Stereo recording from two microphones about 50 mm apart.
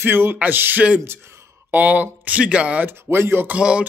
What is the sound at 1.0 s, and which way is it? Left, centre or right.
Speech, right.